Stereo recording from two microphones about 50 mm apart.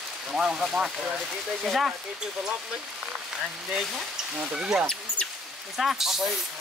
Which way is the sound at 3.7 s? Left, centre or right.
Centre.